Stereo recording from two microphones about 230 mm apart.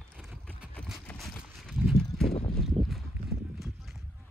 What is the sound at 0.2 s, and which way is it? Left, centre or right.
Clip-clop, centre.